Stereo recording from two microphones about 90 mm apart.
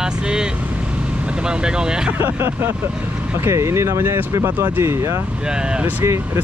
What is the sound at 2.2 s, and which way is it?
Speech, 25° right (ahead or behind).